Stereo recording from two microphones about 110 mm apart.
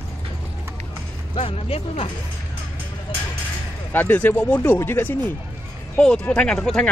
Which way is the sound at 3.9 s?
15° left (ahead or behind).